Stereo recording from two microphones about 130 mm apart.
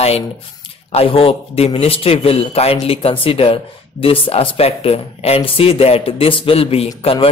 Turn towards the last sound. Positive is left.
turn(degrees=45)  # may be behind; listen again after turning